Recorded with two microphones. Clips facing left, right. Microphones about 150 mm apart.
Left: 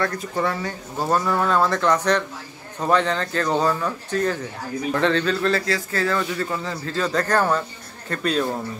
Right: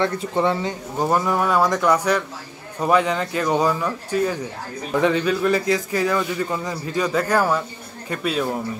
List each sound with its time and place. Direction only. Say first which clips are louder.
0.0 s a man's voice: right 3 dB; 20° right (ahead or behind); by 8.5 s 5° right (ahead or behind)